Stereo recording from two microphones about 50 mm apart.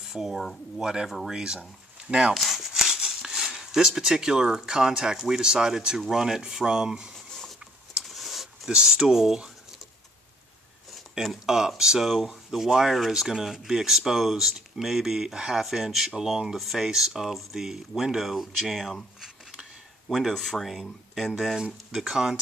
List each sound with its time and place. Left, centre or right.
0.0 s speech: centre; by 2.3 s right
2.3 s speech: centre
8.0 s a sound: centre
8.7 s speech: centre
11.4 s speech: centre
20.1 s speech: centre
21.5 s speech: centre